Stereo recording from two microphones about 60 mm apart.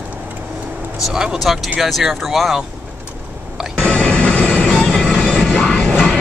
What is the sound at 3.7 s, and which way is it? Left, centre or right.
Music, left.